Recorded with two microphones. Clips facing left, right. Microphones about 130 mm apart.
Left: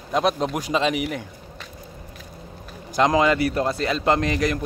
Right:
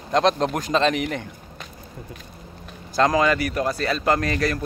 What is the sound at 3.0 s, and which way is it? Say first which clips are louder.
Speech: left 1 dB; 20° left (ahead or behind).